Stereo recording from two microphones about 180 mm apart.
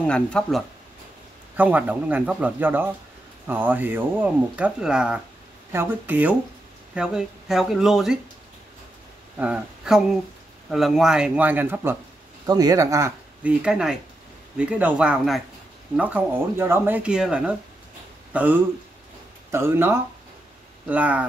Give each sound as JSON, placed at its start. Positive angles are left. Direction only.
{"t": 0.0, "sound": "speech", "side_deg": 5}
{"t": 1.6, "sound": "speech", "side_deg": -10}
{"t": 9.4, "sound": "speech", "side_deg": -5}